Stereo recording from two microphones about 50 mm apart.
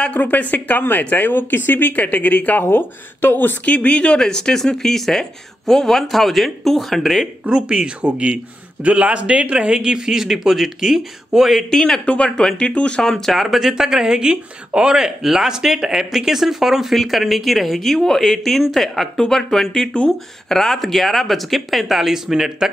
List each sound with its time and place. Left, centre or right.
0.0 s speech: left
2.6 s speech: left
3.6 s speech: left; by 7.2 s centre
7.4 s speech: centre
11.7 s speech: centre